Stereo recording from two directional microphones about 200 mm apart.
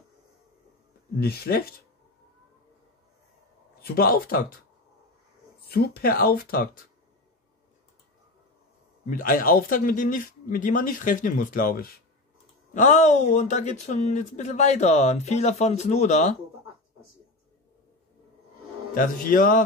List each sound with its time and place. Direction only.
1.2 s speech: 50° left (ahead or behind)
3.8 s speech: 50° left (ahead or behind)
5.7 s speech: 50° left (ahead or behind)
9.1 s speech: 45° left (ahead or behind)
18.9 s speech: 45° left (ahead or behind)